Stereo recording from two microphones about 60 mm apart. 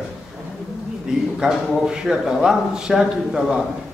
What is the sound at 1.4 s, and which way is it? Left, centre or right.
Speech, centre.